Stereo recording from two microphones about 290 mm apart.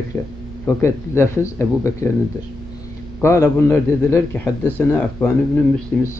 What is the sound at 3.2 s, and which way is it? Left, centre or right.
Speech, centre.